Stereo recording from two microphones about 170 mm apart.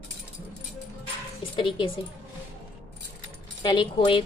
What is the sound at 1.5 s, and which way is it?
Speech, 30° left (ahead or behind).